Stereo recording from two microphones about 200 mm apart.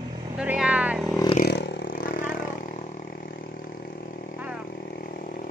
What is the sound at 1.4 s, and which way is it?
Vehicle, 60° left (ahead or behind).